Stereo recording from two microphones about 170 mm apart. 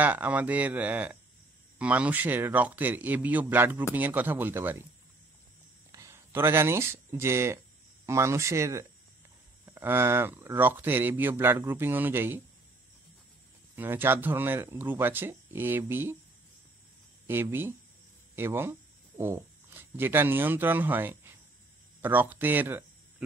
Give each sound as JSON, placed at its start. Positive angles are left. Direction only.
{"t": 0.0, "sound": "speech", "side_deg": -10}
{"t": 5.9, "sound": "speech", "side_deg": -20}
{"t": 13.7, "sound": "speech", "side_deg": -10}
{"t": 17.3, "sound": "speech", "side_deg": -15}